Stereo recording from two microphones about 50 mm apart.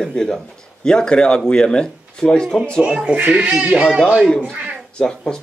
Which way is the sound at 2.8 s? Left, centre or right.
Centre.